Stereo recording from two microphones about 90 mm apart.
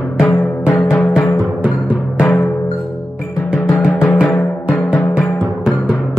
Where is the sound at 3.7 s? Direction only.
25° left (ahead or behind).